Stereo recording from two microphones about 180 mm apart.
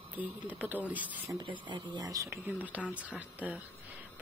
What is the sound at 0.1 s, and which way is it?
Speech, 10° right (ahead or behind).